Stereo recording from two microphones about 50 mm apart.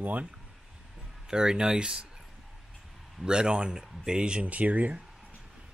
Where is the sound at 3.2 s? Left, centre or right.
Centre; by 5.0 s right.